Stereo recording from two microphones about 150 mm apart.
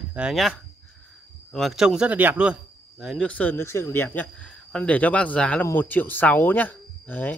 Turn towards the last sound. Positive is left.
turn(degrees=10)  # may be behind; listen again after turning